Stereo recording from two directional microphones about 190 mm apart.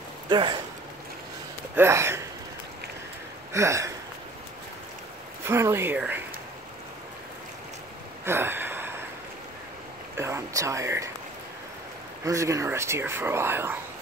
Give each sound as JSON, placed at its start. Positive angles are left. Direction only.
{"t": 0.3, "sound": "speech", "side_deg": -25}
{"t": 1.8, "sound": "speech", "side_deg": -15}
{"t": 3.5, "sound": "speech", "side_deg": -15}
{"t": 5.4, "sound": "speech", "side_deg": -15}
{"t": 8.3, "sound": "a sound", "side_deg": -10}
{"t": 10.1, "sound": "speech", "side_deg": -15}
{"t": 12.3, "sound": "speech", "side_deg": -15}